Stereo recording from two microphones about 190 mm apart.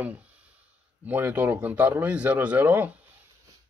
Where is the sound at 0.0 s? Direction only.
5° right (ahead or behind).